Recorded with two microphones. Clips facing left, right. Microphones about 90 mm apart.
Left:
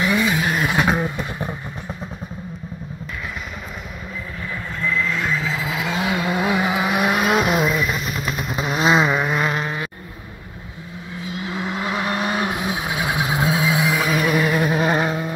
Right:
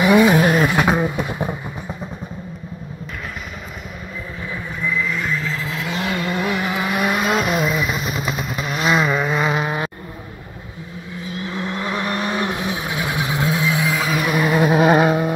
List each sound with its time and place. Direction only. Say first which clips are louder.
0.0 s vehicle: right 7 dB; 20° right (ahead or behind)
0.7 s a sound: right 2 dB; 5° right (ahead or behind)
4.8 s vehicle: even; 5° right (ahead or behind)
7.7 s vehicle: right 1 dB; 10° right (ahead or behind)
8.5 s vehicle: left 2 dB; 25° left (ahead or behind)
9.1 s vehicle: right 1 dB; 5° left (ahead or behind)
11.3 s vehicle: even; 5° left (ahead or behind)
13.8 s a sound: left 1 dB; centre (ahead or behind)
14.7 s vehicle: right 5 dB; 15° right (ahead or behind)